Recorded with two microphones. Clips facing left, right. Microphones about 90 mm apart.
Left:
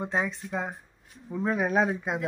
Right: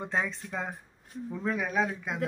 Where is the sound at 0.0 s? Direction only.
10° left (ahead or behind).